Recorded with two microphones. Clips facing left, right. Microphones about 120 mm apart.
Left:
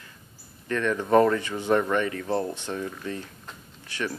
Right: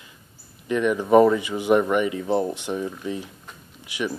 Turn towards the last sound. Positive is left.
turn(degrees=-10)  # may be behind; listen again after turning